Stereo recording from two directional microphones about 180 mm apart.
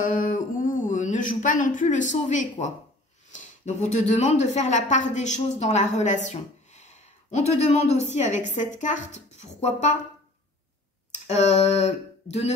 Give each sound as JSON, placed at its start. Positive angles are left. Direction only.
{"t": 0.0, "sound": "speech", "side_deg": 50}
{"t": 11.1, "sound": "speech", "side_deg": 40}